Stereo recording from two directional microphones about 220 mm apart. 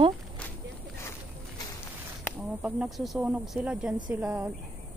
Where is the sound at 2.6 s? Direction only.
5° right (ahead or behind).